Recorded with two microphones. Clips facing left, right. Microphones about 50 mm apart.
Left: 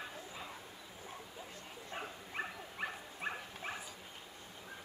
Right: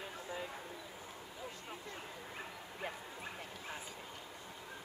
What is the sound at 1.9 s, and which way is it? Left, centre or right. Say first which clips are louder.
Dog: left 4 dB; left.